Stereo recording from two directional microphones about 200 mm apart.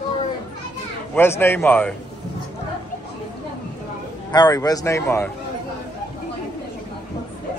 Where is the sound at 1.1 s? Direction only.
10° left (ahead or behind).